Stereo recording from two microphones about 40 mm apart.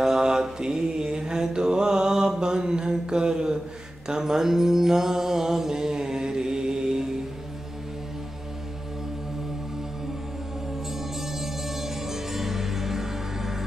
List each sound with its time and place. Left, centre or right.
0.0 s mantra: centre
11.0 s music: centre